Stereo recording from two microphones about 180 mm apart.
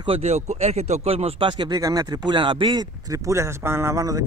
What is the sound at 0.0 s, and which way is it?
Speech, 35° right (ahead or behind).